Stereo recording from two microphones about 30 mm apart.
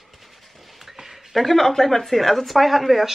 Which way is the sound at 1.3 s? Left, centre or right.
Centre.